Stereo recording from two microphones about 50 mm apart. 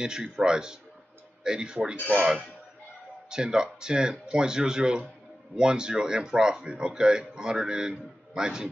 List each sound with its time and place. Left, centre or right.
0.0 s speech: centre
2.0 s speech: right
3.3 s speech: centre